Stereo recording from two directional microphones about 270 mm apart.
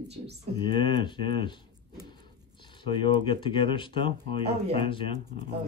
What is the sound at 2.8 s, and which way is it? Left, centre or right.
Speech, centre.